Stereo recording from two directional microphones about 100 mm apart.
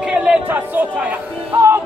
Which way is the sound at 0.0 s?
10° right (ahead or behind).